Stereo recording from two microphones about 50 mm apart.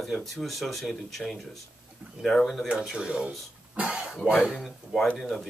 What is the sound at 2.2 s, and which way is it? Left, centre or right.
Speech, centre.